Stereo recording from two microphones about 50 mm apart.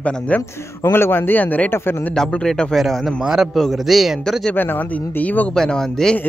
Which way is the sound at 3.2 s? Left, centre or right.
Centre.